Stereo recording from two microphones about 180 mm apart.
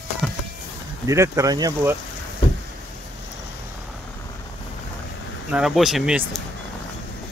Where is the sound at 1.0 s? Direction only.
15° right (ahead or behind).